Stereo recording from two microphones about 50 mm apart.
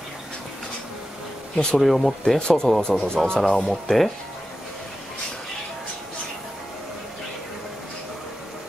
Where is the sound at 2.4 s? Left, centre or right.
Centre.